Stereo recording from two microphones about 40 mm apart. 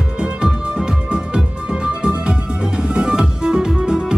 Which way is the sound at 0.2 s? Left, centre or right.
Right.